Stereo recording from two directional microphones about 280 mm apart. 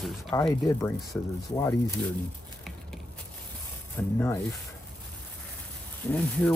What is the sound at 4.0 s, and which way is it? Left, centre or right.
Speech, centre.